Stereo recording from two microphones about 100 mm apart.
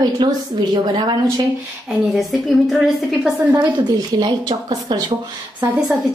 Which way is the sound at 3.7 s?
45° right (ahead or behind).